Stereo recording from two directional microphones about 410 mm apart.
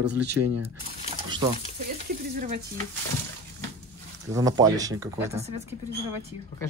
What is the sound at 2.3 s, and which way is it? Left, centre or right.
Speech, right.